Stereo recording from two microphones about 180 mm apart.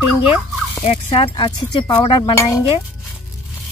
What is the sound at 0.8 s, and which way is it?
Speech, 30° left (ahead or behind).